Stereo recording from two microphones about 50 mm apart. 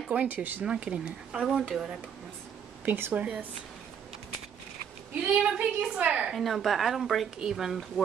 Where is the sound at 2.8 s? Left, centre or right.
Right.